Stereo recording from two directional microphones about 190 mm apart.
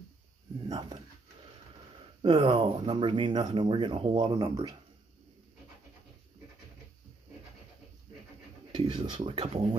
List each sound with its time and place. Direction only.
0.7 s a sound: 20° right (ahead or behind)
2.2 s speech: 30° right (ahead or behind)
8.7 s speech: 25° right (ahead or behind)